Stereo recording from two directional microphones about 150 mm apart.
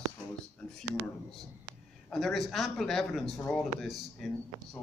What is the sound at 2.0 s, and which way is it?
Speech, centre (ahead or behind).